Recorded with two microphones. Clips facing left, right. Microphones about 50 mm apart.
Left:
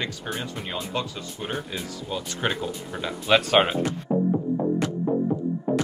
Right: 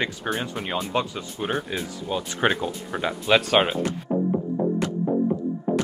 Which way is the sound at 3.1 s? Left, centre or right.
Centre.